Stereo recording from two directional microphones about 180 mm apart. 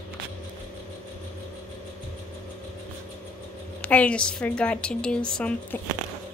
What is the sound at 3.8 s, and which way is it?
A woman's voice, 10° left (ahead or behind).